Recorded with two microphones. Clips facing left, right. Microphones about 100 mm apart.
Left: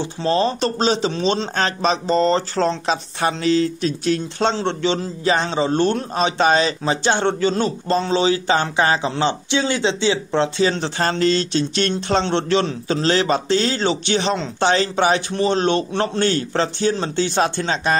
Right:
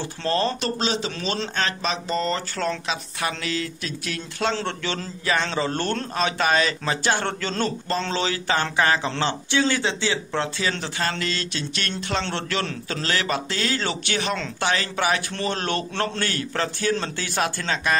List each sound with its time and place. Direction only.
0.0 s a man's voice: 20° left (ahead or behind)
0.6 s a man's voice: 35° left (ahead or behind)